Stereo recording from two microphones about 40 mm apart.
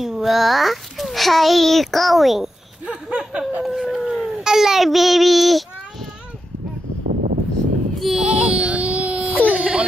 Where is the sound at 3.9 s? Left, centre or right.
Centre.